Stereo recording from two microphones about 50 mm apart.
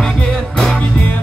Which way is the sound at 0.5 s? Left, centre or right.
Centre.